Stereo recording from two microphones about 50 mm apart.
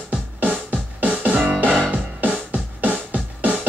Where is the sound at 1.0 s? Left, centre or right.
Right.